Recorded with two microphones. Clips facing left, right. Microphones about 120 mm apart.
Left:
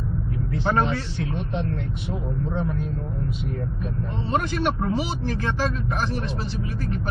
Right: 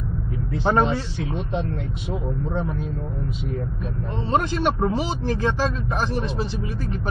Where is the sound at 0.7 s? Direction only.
25° right (ahead or behind).